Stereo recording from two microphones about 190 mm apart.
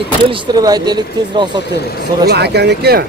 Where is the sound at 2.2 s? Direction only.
60° right (ahead or behind).